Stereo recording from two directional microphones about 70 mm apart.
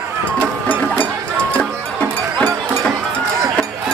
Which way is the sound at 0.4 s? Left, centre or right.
Left.